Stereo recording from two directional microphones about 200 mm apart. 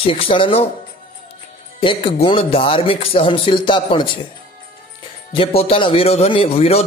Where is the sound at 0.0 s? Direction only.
25° left (ahead or behind).